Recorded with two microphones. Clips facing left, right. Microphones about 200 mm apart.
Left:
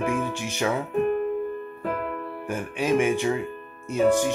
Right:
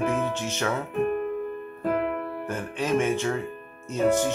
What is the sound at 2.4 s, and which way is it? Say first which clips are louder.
Speech: left 5 dB; 10° left (ahead or behind).